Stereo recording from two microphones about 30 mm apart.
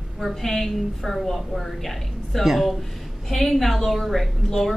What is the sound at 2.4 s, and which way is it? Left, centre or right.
Speech, centre.